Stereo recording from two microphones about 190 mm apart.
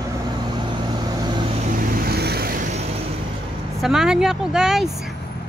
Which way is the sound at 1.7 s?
50° right (ahead or behind).